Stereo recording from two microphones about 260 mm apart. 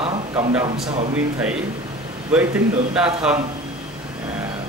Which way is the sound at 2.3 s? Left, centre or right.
Centre.